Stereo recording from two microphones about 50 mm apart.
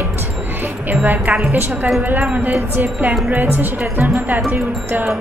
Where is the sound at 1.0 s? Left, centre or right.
Right.